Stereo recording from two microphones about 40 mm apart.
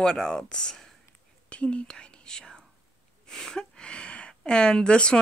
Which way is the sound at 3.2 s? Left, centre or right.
Centre.